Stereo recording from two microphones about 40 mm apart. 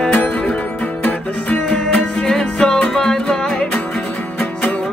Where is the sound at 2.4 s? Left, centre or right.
Left.